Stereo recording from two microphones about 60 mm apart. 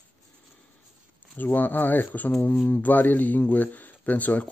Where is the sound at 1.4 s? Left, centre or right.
Left.